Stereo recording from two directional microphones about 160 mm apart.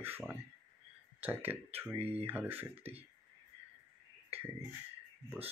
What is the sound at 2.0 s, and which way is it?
Speech, 40° right (ahead or behind).